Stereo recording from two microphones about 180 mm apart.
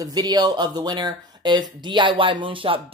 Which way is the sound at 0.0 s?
25° right (ahead or behind).